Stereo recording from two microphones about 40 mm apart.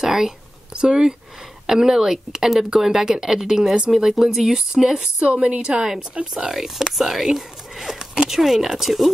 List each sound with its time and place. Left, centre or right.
0.0 s a sound: centre
0.7 s a woman's voice: right
5.2 s a woman's voice: right
6.8 s speech: centre